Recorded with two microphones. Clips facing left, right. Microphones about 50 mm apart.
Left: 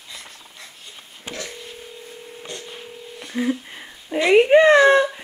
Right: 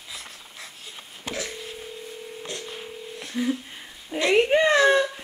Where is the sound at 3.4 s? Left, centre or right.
Centre.